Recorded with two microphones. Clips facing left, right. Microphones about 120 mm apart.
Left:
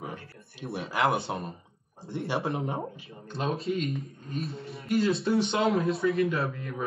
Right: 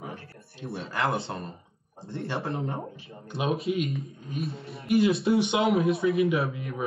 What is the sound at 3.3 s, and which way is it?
Speech, centre (ahead or behind).